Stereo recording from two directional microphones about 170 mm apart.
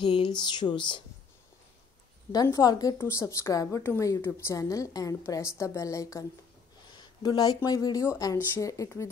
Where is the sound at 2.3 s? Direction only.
20° left (ahead or behind).